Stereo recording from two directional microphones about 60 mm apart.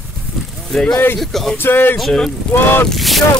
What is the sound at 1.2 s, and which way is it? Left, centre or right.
Speech, centre.